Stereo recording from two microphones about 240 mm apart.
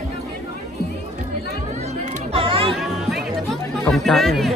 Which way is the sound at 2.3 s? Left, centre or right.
Right.